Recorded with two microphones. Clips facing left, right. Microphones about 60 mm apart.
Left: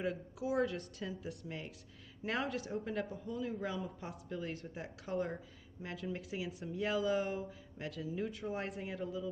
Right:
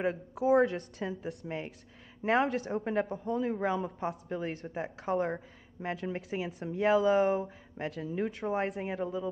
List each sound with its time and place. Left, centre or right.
0.0 s speech: right
2.2 s speech: right
6.6 s speech: right
7.4 s speech: right